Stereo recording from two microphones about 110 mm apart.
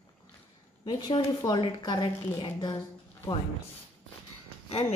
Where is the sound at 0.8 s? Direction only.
40° left (ahead or behind).